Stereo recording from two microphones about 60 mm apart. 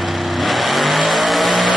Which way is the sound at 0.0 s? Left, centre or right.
Centre.